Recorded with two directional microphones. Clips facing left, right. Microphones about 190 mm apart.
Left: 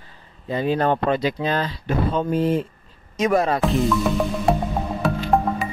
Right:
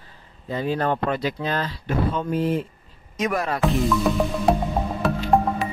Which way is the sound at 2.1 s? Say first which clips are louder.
Left 3 dB; 30° left (ahead or behind).